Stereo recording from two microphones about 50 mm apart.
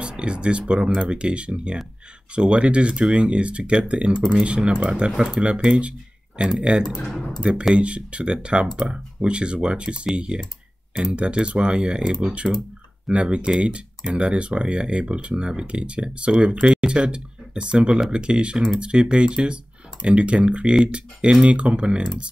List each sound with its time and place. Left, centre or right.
0.0 s speech: right
7.7 s speech: right